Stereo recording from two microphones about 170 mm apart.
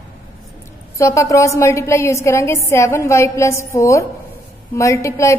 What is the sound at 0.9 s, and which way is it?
A woman's voice, 15° left (ahead or behind).